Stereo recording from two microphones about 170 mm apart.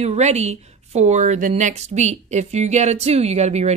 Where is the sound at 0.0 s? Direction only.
40° right (ahead or behind).